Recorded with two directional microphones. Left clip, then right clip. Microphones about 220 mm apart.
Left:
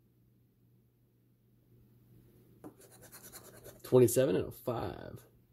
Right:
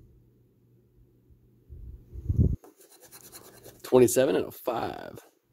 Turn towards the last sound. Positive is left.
turn(degrees=-25)  # may be behind; listen again after turning